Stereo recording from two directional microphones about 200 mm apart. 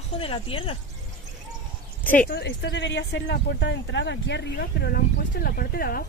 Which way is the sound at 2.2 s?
55° left (ahead or behind).